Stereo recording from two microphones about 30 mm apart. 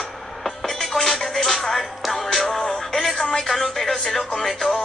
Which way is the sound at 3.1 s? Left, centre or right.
Left.